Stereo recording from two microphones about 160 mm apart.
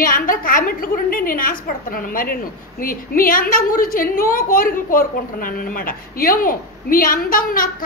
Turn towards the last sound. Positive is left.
turn(degrees=65)  # may be behind; listen again after turning